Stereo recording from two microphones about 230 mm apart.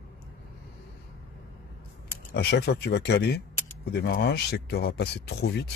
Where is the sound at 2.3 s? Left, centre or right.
Left.